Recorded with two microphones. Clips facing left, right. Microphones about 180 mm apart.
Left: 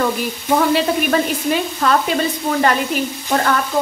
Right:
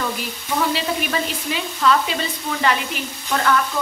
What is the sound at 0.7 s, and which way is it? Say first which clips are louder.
Frying: left 7 dB; 50° left (ahead or behind).